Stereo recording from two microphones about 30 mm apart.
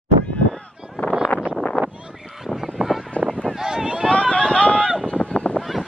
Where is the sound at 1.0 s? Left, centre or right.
Left.